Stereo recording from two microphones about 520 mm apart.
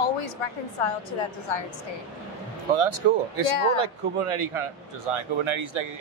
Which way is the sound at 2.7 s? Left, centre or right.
Right.